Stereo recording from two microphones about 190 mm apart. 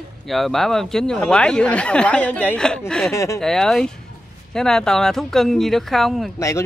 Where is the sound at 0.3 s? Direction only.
Centre (ahead or behind).